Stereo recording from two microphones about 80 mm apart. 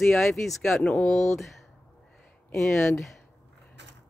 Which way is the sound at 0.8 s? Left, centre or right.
Centre.